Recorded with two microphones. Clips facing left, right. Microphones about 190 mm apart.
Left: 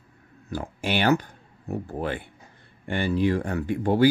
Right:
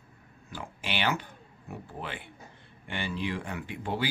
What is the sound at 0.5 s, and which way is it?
Speech, 45° left (ahead or behind).